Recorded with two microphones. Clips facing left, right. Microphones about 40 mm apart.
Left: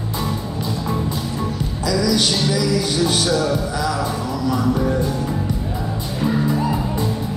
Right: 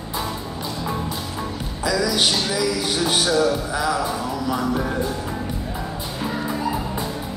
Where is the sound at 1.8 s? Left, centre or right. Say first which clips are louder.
Left 1 dB; centre.